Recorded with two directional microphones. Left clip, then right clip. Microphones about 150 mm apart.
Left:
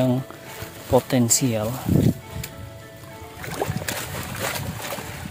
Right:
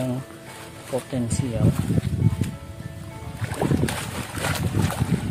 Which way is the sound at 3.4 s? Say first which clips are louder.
Right 3 dB; 25° left (ahead or behind).